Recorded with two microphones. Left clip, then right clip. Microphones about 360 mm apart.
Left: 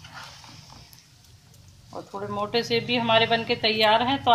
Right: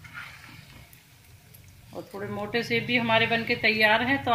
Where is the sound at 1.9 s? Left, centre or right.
Left.